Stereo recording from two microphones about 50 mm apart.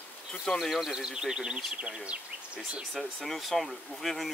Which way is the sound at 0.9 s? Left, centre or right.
Centre.